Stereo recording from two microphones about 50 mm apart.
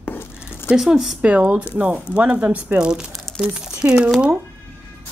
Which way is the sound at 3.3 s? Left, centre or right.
Centre.